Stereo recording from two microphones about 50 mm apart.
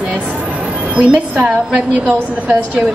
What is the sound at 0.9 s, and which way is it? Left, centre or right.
A woman's voice, right.